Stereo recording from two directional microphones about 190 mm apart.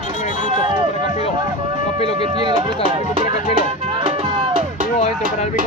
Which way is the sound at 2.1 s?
25° right (ahead or behind).